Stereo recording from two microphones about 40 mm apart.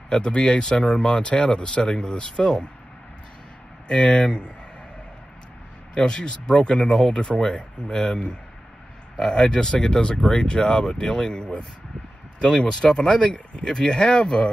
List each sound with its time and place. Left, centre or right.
0.2 s speech: left
3.8 s speech: left
5.9 s speech: left